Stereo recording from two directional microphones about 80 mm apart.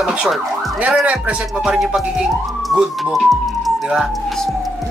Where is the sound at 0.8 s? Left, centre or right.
Centre.